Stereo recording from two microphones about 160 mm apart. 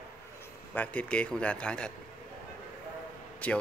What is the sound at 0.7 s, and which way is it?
Speech, 10° left (ahead or behind).